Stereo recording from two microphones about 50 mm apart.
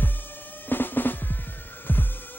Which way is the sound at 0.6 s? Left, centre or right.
Left.